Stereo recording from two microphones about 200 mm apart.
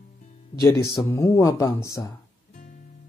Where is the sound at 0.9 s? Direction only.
15° left (ahead or behind).